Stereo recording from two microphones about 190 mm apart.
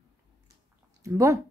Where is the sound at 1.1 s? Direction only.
15° right (ahead or behind).